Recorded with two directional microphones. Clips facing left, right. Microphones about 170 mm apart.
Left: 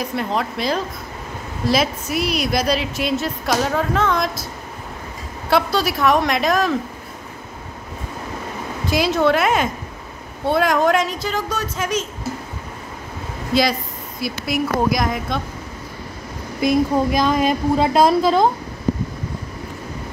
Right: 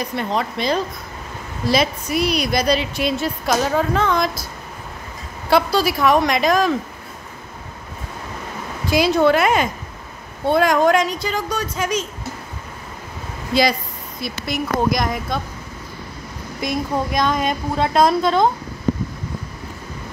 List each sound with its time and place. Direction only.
0.0 s a woman's voice: 5° left (ahead or behind)
5.5 s a woman's voice: centre (ahead or behind)
8.8 s a woman's voice: centre (ahead or behind)
13.5 s a woman's voice: centre (ahead or behind)
16.6 s a woman's voice: 5° left (ahead or behind)